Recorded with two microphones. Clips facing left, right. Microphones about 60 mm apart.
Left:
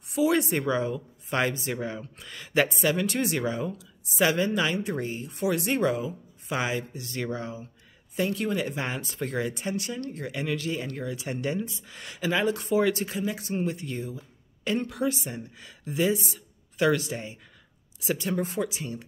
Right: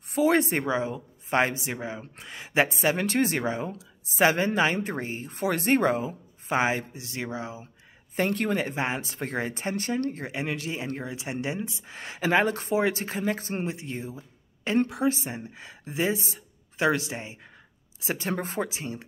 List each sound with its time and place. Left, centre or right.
0.1 s speech: right
0.7 s speech: right
1.7 s speech: centre
2.0 s speech: right
7.2 s speech: centre
8.2 s speech: right
10.2 s speech: right